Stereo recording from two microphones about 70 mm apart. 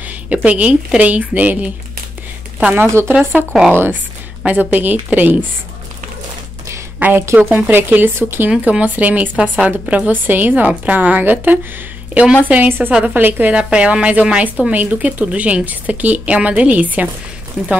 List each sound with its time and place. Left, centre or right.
0.3 s speech: centre
2.7 s speech: right
7.0 s speech: right
8.5 s a woman's voice: centre